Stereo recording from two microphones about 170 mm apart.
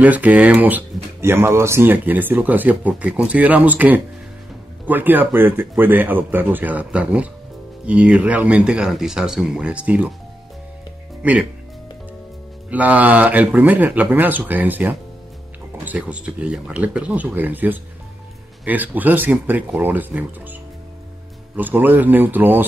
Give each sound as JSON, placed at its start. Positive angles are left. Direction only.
{"t": 0.0, "sound": "speech", "side_deg": -10}
{"t": 12.6, "sound": "speech", "side_deg": -10}
{"t": 21.5, "sound": "speech", "side_deg": -10}